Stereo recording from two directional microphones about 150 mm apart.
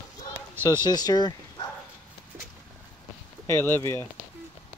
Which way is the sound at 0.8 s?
25° left (ahead or behind).